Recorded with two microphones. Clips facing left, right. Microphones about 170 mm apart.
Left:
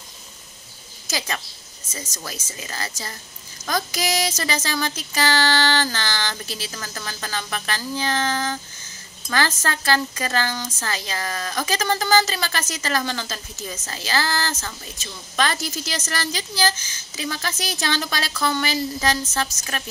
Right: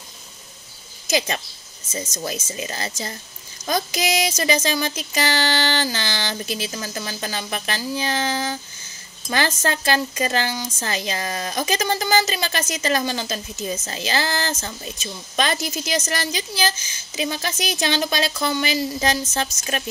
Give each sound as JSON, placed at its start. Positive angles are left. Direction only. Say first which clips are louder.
{"t": 1.0, "sound": "speech", "louder": "right 6 dB", "side_deg": -20}